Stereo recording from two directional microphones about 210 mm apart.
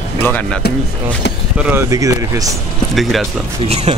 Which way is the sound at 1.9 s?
15° right (ahead or behind).